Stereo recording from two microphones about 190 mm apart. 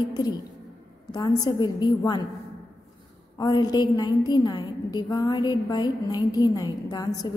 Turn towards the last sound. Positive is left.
turn(degrees=20)  # may be behind; listen again after turning